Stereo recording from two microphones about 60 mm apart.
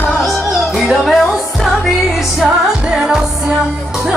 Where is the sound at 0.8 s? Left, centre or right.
Centre.